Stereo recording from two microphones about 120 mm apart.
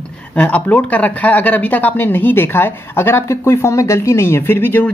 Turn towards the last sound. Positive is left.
turn(degrees=15)  # may be behind; listen again after turning